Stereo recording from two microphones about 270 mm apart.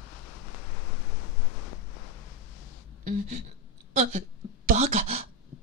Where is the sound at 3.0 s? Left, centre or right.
Right.